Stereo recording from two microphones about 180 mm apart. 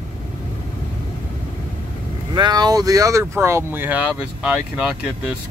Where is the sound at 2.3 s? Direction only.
25° right (ahead or behind); by 4.6 s 5° right (ahead or behind).